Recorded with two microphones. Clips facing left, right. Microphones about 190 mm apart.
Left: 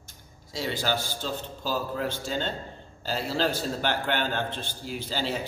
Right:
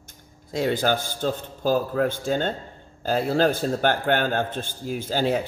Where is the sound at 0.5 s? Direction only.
55° right (ahead or behind).